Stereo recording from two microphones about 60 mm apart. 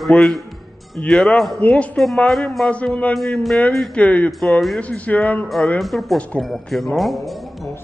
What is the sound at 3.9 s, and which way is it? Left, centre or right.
Speech, left.